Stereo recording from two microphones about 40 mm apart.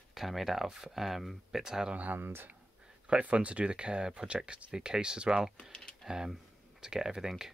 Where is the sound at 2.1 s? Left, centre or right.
Right.